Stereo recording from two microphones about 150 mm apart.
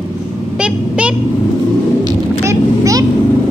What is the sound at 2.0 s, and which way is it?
Vehicle, 20° right (ahead or behind).